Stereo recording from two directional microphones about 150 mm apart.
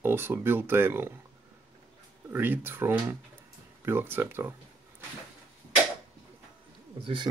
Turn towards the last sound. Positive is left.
turn(degrees=-30)  # may be behind; listen again after turning